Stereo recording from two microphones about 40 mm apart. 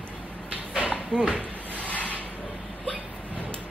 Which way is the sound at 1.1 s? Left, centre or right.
Centre.